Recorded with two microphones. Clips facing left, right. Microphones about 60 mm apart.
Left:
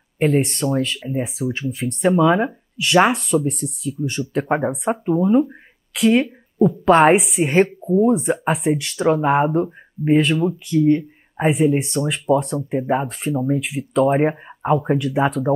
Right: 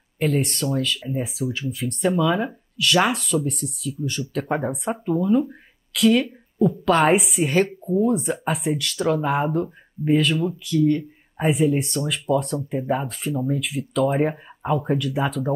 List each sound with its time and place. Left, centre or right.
0.2 s speech: left